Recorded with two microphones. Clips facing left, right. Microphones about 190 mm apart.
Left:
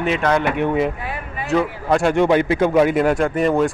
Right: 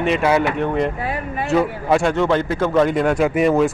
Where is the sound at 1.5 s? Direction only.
Centre (ahead or behind).